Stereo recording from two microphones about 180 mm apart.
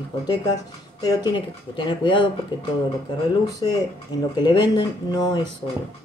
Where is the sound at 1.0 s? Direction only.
25° left (ahead or behind).